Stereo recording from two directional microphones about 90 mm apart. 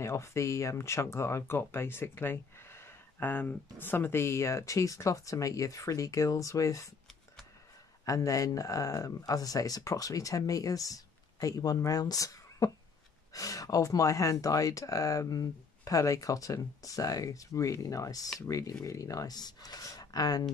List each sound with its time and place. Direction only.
0.0 s speech: 30° left (ahead or behind)
8.0 s speech: 40° left (ahead or behind)